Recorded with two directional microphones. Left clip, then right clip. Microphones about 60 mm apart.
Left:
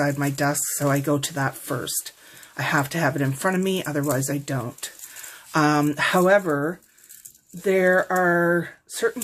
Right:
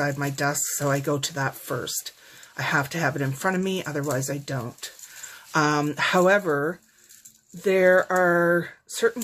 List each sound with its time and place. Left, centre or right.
0.0 s speech: right
4.1 s speech: centre
5.3 s speech: right
6.2 s speech: right